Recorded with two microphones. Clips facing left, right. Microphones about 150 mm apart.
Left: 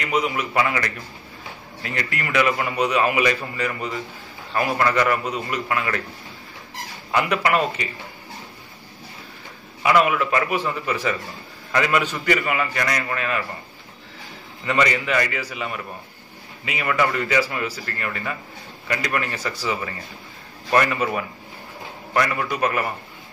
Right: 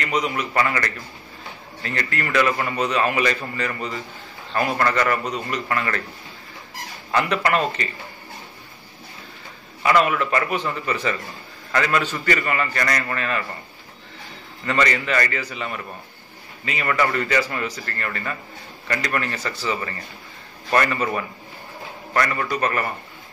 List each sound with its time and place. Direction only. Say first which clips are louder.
0.0 s a man's voice: left 1 dB; 5° left (ahead or behind)
7.1 s a man's voice: even; 10° left (ahead or behind)
9.8 s a man's voice: even; 5° left (ahead or behind)
14.7 s a man's voice: left 1 dB; 10° left (ahead or behind)